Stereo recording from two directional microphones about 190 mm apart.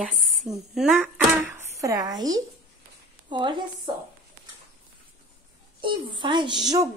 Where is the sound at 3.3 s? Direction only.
25° right (ahead or behind).